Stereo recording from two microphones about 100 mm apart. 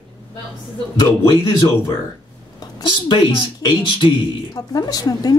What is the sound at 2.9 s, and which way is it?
Speech, 50° left (ahead or behind).